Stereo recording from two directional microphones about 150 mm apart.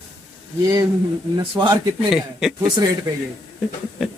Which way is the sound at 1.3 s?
30° right (ahead or behind).